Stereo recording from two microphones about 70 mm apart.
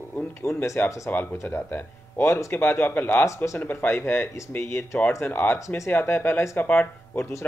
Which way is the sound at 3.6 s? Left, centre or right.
Left.